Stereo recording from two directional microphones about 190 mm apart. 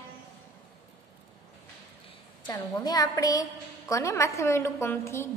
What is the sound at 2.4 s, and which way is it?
A woman's voice, 20° left (ahead or behind).